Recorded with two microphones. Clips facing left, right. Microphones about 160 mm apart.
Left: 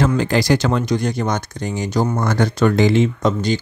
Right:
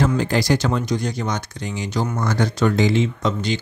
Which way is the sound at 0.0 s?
90° left.